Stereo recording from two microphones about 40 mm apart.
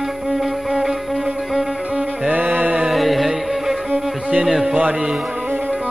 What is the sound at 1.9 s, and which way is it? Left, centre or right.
Music, centre.